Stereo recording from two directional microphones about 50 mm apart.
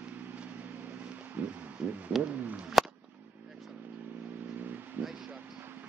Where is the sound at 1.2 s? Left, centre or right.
Right.